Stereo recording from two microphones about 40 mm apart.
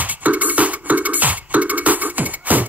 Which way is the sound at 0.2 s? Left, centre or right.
Right.